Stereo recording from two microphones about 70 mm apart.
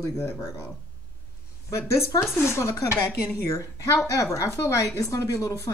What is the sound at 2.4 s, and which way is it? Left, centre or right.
Speech, left.